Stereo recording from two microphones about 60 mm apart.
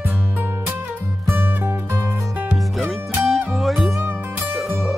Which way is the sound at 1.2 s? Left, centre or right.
Right.